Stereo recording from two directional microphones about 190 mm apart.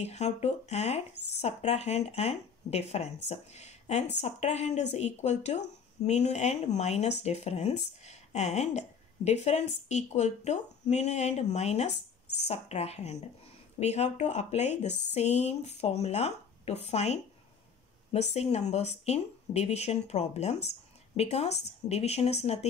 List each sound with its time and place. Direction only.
0.0 s speech: 35° left (ahead or behind)
18.3 s speech: 35° left (ahead or behind)